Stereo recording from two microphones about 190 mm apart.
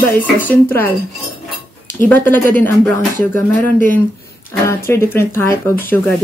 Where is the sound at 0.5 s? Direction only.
10° left (ahead or behind).